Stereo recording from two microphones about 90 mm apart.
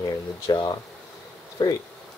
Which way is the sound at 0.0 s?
55° left (ahead or behind).